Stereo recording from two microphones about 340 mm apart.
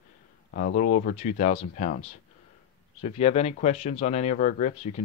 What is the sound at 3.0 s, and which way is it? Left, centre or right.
Speech, centre.